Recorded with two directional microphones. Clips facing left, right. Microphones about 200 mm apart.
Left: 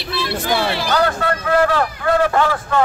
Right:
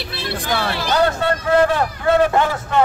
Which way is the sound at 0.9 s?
25° right (ahead or behind).